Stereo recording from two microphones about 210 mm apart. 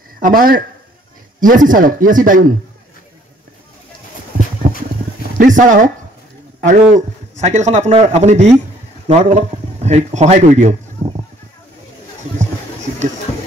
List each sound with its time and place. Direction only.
0.2 s a man's voice: 40° right (ahead or behind)
4.6 s boat: 40° right (ahead or behind)
5.4 s a man's voice: 40° right (ahead or behind)